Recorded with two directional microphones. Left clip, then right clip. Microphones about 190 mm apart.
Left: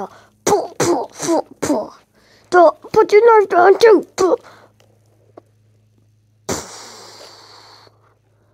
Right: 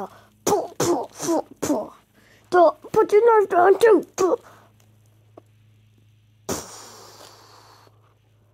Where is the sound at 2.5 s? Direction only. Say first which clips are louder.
Left 5 dB; 5° left (ahead or behind).